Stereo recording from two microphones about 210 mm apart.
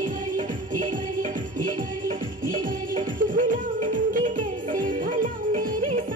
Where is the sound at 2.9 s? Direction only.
40° right (ahead or behind).